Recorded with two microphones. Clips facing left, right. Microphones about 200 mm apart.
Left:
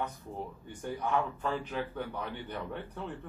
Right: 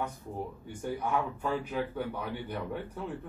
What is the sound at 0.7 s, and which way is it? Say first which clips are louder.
A man's voice: right 1 dB; 10° right (ahead or behind).